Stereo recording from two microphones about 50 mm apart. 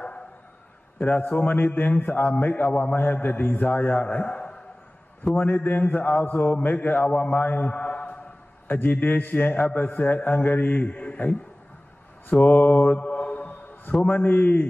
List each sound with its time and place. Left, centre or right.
0.9 s a man's voice: left
5.4 s a man's voice: left
8.6 s a man's voice: left
10.9 s a man's voice: left
12.4 s mantra: left
14.0 s a man's voice: left